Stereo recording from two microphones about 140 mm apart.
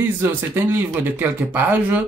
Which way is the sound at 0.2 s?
15° right (ahead or behind).